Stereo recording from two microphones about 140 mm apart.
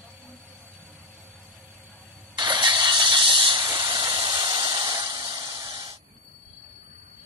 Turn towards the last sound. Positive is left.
turn(degrees=-30)  # may be behind; listen again after turning